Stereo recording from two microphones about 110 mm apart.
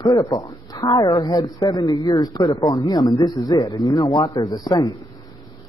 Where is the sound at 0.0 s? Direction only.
35° left (ahead or behind).